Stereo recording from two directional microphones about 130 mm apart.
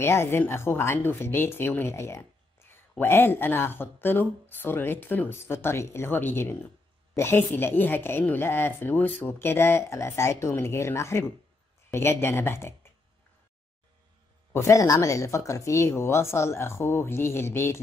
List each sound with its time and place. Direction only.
0.0 s speech: 20° left (ahead or behind)
14.5 s speech: 20° left (ahead or behind)